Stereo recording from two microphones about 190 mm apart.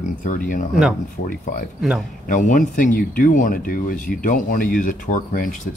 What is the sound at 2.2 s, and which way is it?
Speech, 40° left (ahead or behind).